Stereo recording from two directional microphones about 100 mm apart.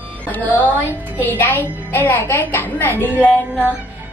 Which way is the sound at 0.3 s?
15° left (ahead or behind).